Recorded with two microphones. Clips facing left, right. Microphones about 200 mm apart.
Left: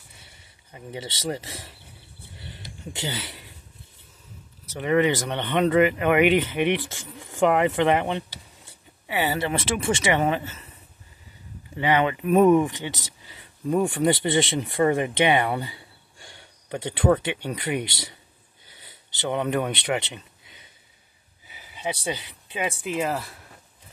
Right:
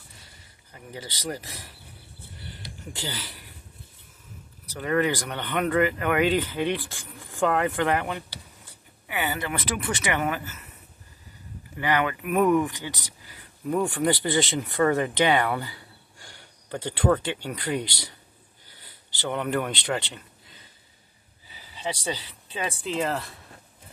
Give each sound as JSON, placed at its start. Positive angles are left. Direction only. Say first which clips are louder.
{"t": 0.7, "sound": "speech", "louder": "left 4 dB", "side_deg": 25}
{"t": 2.9, "sound": "speech", "louder": "left 4 dB", "side_deg": 20}
{"t": 4.6, "sound": "speech", "louder": "left 3 dB", "side_deg": 20}
{"t": 11.7, "sound": "speech", "louder": "left 3 dB", "side_deg": 25}